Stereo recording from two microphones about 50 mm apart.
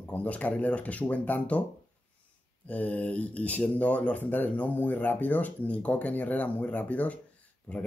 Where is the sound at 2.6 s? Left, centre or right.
Left.